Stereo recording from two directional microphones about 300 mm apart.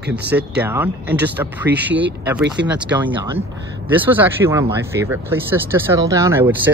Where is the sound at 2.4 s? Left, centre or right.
Right.